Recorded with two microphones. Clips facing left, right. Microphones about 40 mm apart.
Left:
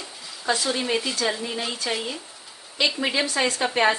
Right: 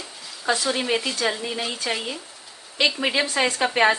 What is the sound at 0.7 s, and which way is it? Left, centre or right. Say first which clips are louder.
Speech: right 1 dB; centre.